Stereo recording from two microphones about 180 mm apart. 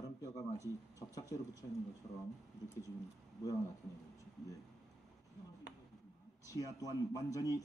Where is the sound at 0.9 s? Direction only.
20° left (ahead or behind).